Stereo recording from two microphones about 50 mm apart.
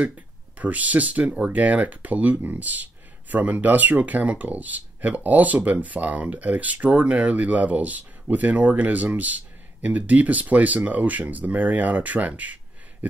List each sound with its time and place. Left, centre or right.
0.6 s speech: right